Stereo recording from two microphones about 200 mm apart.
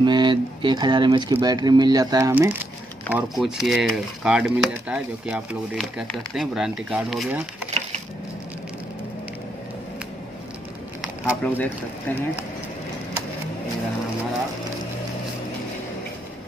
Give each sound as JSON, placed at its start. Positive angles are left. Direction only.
{"t": 0.0, "sound": "speech", "side_deg": -20}
{"t": 11.4, "sound": "speech", "side_deg": 10}